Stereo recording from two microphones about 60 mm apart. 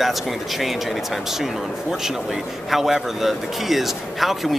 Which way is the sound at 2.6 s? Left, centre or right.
Centre.